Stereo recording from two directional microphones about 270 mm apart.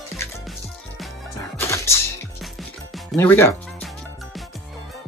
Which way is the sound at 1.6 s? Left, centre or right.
Centre.